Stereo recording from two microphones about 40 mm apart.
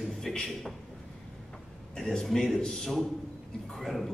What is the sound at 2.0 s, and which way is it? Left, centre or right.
A man's voice, centre.